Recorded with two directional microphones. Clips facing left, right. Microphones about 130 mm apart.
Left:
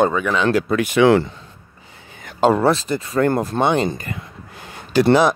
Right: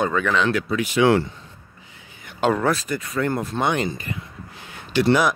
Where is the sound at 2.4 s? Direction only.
30° left (ahead or behind).